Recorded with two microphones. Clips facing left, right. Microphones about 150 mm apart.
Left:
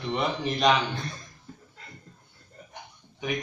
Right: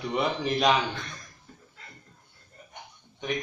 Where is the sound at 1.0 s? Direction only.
35° left (ahead or behind).